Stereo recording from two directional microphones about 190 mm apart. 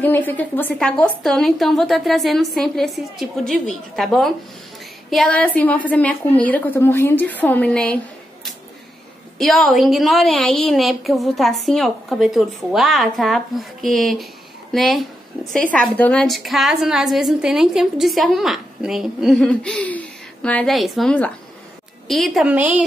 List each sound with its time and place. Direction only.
0.0 s a woman's voice: 10° left (ahead or behind)
9.4 s a woman's voice: centre (ahead or behind)